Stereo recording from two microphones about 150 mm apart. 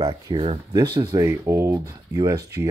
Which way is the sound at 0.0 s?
35° right (ahead or behind).